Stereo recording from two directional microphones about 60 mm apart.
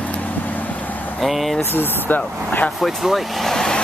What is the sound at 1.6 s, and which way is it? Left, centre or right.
Speech, left.